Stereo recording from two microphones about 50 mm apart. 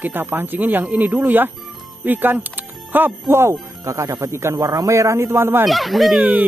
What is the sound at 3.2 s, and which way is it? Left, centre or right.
Speech, right.